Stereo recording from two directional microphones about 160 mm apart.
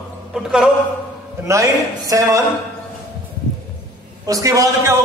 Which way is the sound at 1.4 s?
20° right (ahead or behind).